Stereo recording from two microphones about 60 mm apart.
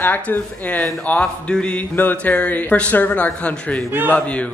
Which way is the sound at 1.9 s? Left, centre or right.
Left.